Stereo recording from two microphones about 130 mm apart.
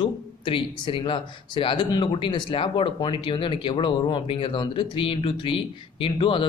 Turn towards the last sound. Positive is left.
turn(degrees=40)  # may be behind; listen again after turning